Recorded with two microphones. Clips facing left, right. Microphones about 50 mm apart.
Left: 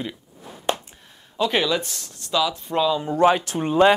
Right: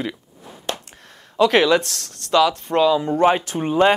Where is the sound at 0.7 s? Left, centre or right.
Left.